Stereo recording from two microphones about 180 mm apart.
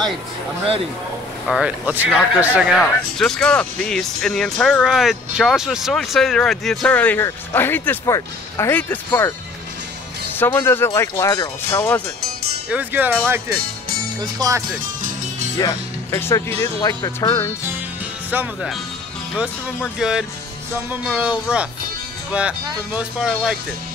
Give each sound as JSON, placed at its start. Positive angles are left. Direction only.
{"t": 1.5, "sound": "speech", "side_deg": -5}
{"t": 10.3, "sound": "speech", "side_deg": 10}
{"t": 12.6, "sound": "speech", "side_deg": -10}
{"t": 15.6, "sound": "speech", "side_deg": 15}
{"t": 18.3, "sound": "speech", "side_deg": -5}
{"t": 20.0, "sound": "speech", "side_deg": -5}